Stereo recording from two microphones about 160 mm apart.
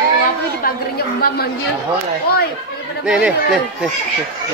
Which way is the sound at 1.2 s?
75° left (ahead or behind).